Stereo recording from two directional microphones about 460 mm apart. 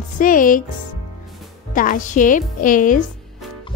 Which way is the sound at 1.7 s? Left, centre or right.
Centre.